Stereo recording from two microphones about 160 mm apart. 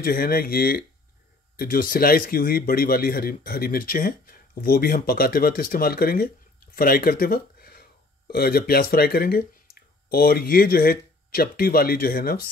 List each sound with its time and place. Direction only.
0.0 s speech: 70° left (ahead or behind)